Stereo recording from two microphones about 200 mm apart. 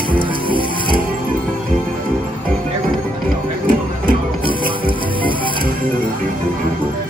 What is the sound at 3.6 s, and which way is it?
Music, 45° right (ahead or behind).